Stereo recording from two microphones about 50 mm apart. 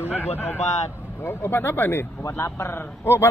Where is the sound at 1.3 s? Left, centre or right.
Left.